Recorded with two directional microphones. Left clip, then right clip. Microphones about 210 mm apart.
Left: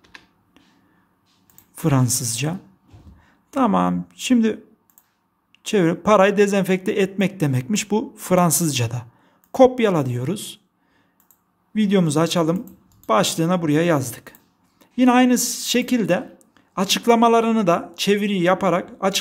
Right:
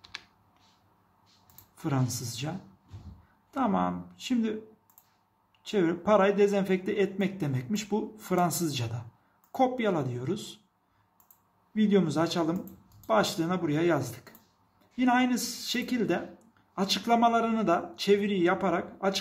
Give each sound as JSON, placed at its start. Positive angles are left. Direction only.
{"t": 1.8, "sound": "a man's voice", "side_deg": 50}
{"t": 11.7, "sound": "a man's voice", "side_deg": 45}